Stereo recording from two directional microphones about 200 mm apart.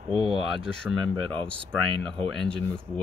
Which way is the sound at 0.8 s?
5° left (ahead or behind).